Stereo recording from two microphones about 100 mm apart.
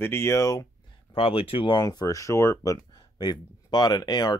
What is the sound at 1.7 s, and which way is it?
Speech, 40° left (ahead or behind).